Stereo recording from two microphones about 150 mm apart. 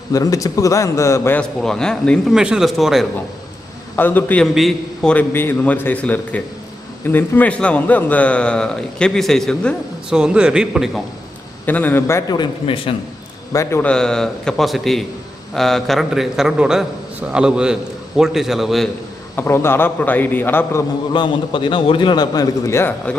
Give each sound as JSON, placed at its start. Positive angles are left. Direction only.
{"t": 0.1, "sound": "a man's voice", "side_deg": 25}
{"t": 1.4, "sound": "a man's voice", "side_deg": 5}
{"t": 3.9, "sound": "a man's voice", "side_deg": 15}
{"t": 10.1, "sound": "a man's voice", "side_deg": -5}
{"t": 11.6, "sound": "a man's voice", "side_deg": 10}
{"t": 13.5, "sound": "a man's voice", "side_deg": 20}
{"t": 13.8, "sound": "a man's voice", "side_deg": 5}
{"t": 19.3, "sound": "a man's voice", "side_deg": 15}
{"t": 21.1, "sound": "a man's voice", "side_deg": 35}